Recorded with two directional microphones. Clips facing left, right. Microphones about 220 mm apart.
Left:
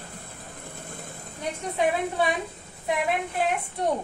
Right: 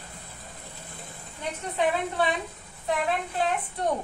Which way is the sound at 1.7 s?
10° left (ahead or behind).